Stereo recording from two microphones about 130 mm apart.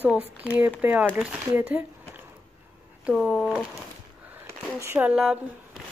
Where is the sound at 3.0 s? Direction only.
5° right (ahead or behind).